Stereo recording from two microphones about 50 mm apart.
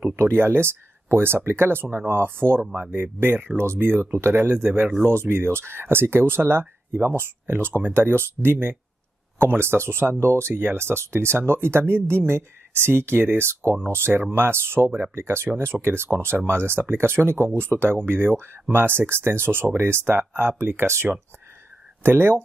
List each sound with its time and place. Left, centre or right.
0.1 s speech: right
2.7 s speech: right
10.2 s speech: right
10.5 s speech: right
22.0 s speech: right